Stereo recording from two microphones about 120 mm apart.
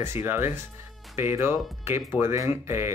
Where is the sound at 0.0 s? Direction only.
20° right (ahead or behind).